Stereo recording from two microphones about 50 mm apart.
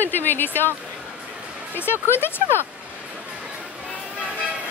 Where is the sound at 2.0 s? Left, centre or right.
Left.